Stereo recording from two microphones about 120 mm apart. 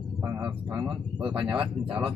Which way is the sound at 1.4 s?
10° right (ahead or behind).